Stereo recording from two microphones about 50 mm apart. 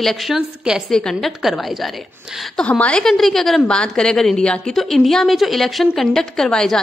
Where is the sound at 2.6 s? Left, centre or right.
Left.